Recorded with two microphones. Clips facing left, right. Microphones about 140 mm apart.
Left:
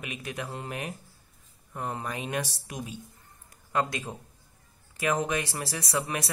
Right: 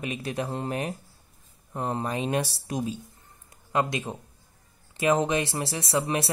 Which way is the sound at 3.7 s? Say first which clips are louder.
Right 3 dB; 20° right (ahead or behind).